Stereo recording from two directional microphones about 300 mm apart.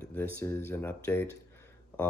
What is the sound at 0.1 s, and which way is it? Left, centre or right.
Speech, centre.